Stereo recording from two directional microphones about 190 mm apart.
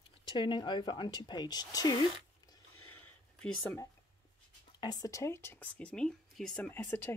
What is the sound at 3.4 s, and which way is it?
Speech, 10° left (ahead or behind).